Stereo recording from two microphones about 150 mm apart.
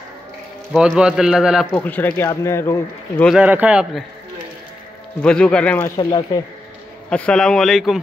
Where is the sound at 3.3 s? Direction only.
10° right (ahead or behind).